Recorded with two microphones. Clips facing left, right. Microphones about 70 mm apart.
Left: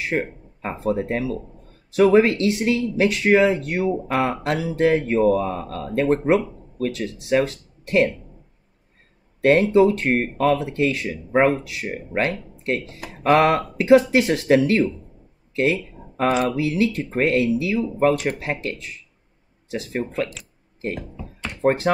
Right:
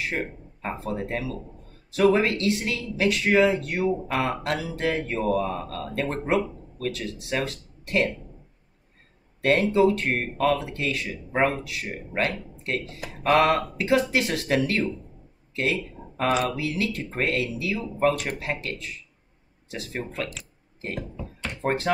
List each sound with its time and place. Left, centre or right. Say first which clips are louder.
0.1 s speech: left 6 dB; left
9.4 s speech: left 5 dB; left
15.5 s a sound: left 5 dB; left
16.4 s speech: left 6 dB; left
19.7 s speech: left 7 dB; left
21.6 s speech: left 6 dB; left